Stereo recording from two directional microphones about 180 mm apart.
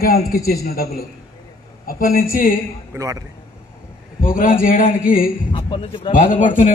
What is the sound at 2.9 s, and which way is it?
Speech, 20° right (ahead or behind).